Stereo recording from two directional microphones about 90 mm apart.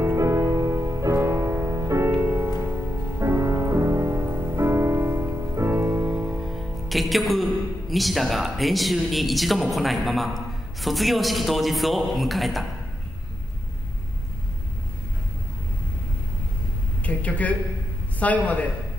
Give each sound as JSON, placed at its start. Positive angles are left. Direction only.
{"t": 0.0, "sound": "music", "side_deg": -30}
{"t": 5.9, "sound": "music", "side_deg": -15}
{"t": 7.9, "sound": "speech", "side_deg": 0}
{"t": 17.0, "sound": "a man's voice", "side_deg": 15}